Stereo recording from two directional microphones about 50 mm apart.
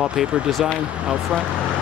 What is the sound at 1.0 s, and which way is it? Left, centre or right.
Speech, centre.